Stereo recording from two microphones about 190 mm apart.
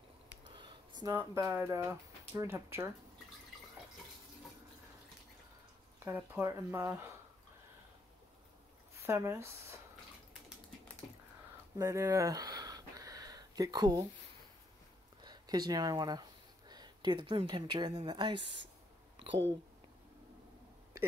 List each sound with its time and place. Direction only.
0.6 s a sound: 25° right (ahead or behind)
1.1 s speech: 10° right (ahead or behind)
6.0 s speech: 10° right (ahead or behind)
8.9 s speech: 15° right (ahead or behind)
11.8 s a sound: 15° right (ahead or behind)
15.2 s speech: 20° right (ahead or behind)